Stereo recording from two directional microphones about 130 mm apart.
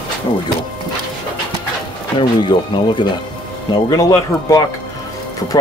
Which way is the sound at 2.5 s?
35° left (ahead or behind).